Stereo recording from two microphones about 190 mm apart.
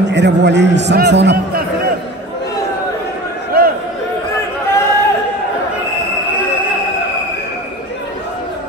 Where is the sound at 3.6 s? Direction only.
50° right (ahead or behind).